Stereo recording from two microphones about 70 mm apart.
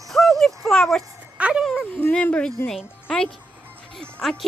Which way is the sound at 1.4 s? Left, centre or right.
Centre.